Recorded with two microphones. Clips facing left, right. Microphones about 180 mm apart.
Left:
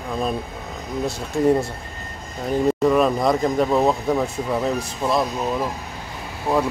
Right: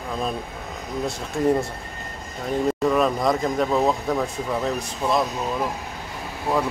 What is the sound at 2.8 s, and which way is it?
Speech, centre (ahead or behind).